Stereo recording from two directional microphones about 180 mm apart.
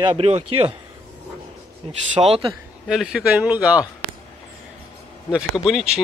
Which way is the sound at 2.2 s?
30° right (ahead or behind).